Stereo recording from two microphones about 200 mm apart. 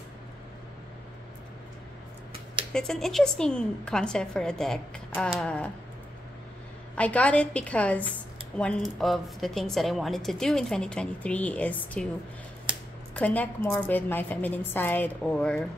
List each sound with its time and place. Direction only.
2.7 s a woman's voice: centre (ahead or behind)
7.0 s a woman's voice: 5° left (ahead or behind)
12.7 s computer keyboard: 25° right (ahead or behind)
13.1 s a woman's voice: 10° left (ahead or behind)